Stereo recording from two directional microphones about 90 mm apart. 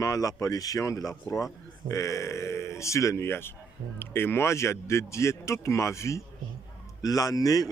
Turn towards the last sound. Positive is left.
turn(degrees=40)  # may be behind; listen again after turning